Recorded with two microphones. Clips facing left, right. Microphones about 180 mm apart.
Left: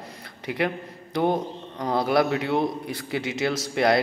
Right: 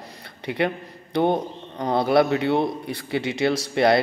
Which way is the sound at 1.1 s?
30° right (ahead or behind).